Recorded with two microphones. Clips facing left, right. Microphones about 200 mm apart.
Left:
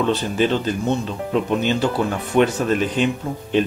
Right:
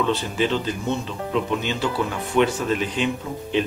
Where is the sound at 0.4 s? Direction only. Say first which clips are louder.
Left 4 dB; 50° left (ahead or behind).